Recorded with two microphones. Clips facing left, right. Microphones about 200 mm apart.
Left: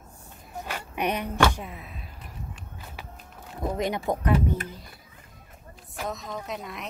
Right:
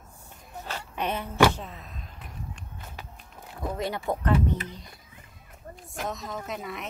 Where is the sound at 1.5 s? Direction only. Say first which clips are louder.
Left 1 dB; 10° left (ahead or behind).